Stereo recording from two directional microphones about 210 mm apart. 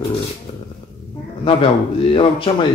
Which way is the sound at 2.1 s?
25° left (ahead or behind).